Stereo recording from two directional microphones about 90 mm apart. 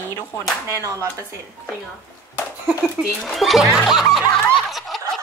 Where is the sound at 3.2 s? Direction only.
Centre (ahead or behind).